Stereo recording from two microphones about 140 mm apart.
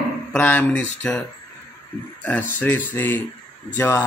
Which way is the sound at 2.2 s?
10° left (ahead or behind).